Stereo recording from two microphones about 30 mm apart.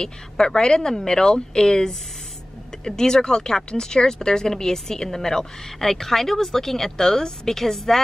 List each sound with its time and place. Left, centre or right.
0.0 s speech: left